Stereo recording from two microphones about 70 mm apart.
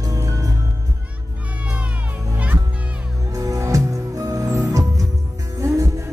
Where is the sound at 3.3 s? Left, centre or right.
Right.